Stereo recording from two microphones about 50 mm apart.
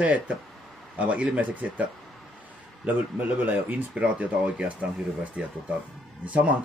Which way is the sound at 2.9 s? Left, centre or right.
Right.